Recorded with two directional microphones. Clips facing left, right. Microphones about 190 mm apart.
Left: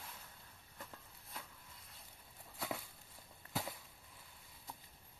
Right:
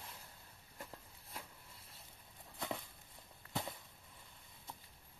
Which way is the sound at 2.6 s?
Centre (ahead or behind).